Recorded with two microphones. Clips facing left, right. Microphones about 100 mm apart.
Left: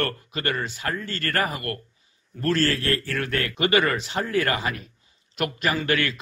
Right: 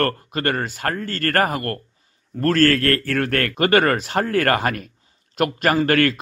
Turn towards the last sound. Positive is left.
turn(degrees=-50)  # may be behind; listen again after turning